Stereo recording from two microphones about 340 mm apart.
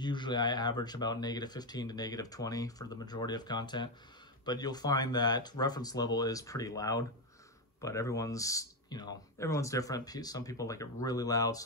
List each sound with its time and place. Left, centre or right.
0.0 s speech: centre